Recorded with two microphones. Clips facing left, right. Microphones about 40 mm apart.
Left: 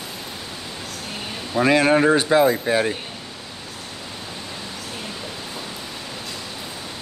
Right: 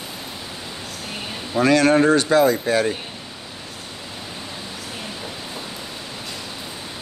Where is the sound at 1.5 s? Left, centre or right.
Centre.